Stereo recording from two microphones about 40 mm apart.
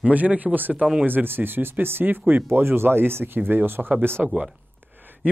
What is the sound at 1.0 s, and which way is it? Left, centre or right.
Speech, right.